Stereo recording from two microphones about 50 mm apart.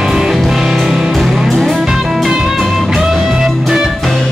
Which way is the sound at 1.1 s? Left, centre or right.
Centre.